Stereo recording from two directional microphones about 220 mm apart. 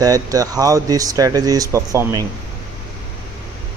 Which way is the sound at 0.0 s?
15° right (ahead or behind).